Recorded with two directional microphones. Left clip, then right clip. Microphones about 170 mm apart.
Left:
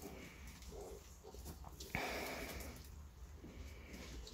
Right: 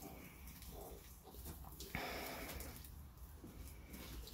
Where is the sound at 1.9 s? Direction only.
35° left (ahead or behind).